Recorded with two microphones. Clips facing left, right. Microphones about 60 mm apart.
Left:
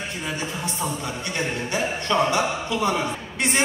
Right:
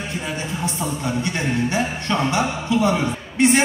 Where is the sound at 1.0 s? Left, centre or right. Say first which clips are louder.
Right 4 dB; right.